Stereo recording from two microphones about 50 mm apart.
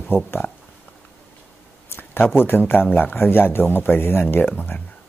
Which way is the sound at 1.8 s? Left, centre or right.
Left.